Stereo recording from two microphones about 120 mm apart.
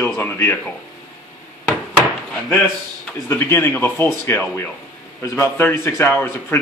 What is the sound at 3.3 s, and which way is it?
A man's voice, 20° left (ahead or behind).